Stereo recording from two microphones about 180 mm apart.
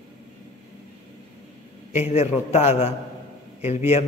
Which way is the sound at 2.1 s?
35° left (ahead or behind).